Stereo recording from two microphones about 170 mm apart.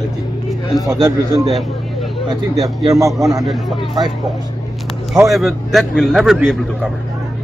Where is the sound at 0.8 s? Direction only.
20° right (ahead or behind).